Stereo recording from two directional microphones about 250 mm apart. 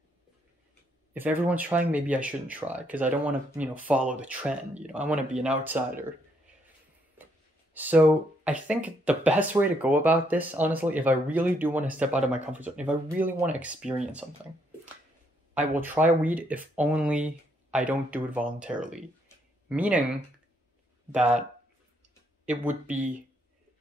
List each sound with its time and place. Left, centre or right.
1.1 s speech: centre
7.7 s speech: centre
15.5 s speech: centre
21.1 s speech: centre
22.5 s speech: centre